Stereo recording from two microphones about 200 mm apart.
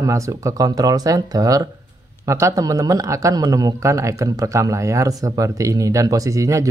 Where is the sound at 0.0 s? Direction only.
15° right (ahead or behind).